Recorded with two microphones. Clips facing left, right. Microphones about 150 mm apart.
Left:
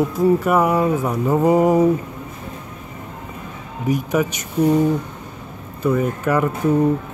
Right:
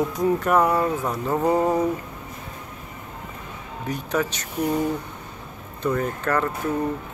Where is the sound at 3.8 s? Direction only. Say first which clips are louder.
Left 6 dB; 10° left (ahead or behind).